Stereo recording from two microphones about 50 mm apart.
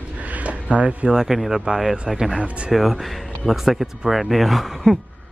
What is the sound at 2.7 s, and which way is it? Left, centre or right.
Speech, centre.